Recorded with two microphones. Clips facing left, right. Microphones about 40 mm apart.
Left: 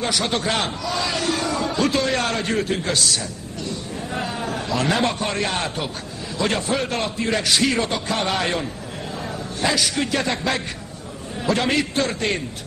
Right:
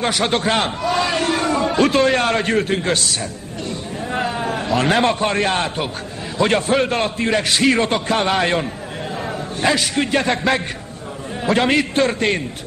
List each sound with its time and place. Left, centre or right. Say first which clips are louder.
0.0 s a man's voice: right 4 dB; right
3.6 s a sound: right 3 dB; right
4.5 s a man's voice: right 4 dB; right